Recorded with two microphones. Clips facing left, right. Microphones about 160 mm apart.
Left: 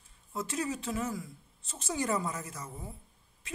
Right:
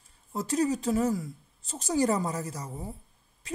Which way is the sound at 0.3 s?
40° right (ahead or behind).